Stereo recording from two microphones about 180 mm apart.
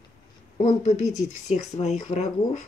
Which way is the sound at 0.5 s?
40° left (ahead or behind).